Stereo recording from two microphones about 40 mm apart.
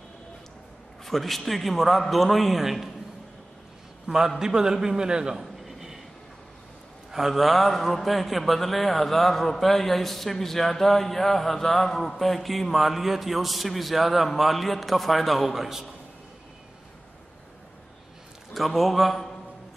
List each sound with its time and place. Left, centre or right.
1.0 s a man's voice: centre
4.1 s a man's voice: right
5.4 s a sound: centre
7.1 s a man's voice: centre
18.5 s a man's voice: centre